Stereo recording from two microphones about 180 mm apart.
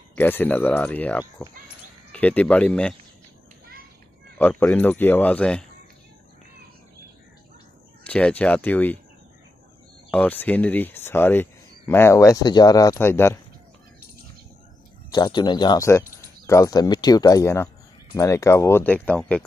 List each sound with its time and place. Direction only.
0.1 s speech: 10° left (ahead or behind)
4.4 s speech: 10° left (ahead or behind)
8.0 s speech: 5° left (ahead or behind)
10.1 s speech: 10° left (ahead or behind)
15.0 s speech: 25° left (ahead or behind); by 19.4 s 5° left (ahead or behind)